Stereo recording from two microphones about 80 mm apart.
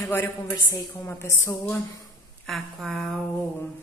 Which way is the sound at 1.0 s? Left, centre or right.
Left.